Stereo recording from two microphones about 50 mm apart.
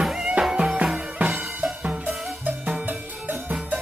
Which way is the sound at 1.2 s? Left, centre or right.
Right.